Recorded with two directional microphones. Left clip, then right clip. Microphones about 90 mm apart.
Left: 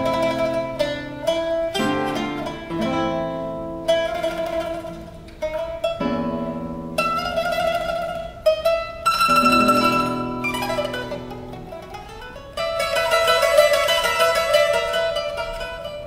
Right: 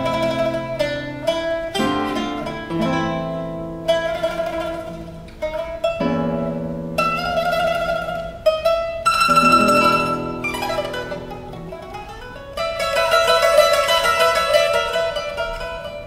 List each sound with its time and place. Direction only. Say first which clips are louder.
0.0 s music: right 1 dB; 25° left (ahead or behind)
2.9 s music: left 2 dB; 25° right (ahead or behind)
3.8 s music: right 1 dB; 30° left (ahead or behind)
5.9 s music: right 3 dB; 30° right (ahead or behind)
6.2 s music: right 3 dB; 15° right (ahead or behind)
7.0 s mandolin: right 2 dB; 25° left (ahead or behind)
8.5 s music: right 1 dB; 25° left (ahead or behind)
9.8 s music: right 3 dB; 25° right (ahead or behind)
10.4 s mandolin: right 1 dB; 25° left (ahead or behind)
12.5 s music: right 2 dB; 25° left (ahead or behind)